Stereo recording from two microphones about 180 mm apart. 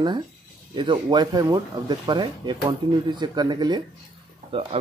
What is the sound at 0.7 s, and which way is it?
Speech, 25° right (ahead or behind).